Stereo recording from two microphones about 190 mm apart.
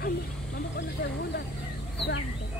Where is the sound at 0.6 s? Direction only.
65° left (ahead or behind).